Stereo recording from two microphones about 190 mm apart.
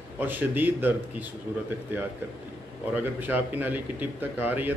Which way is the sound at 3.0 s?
10° right (ahead or behind).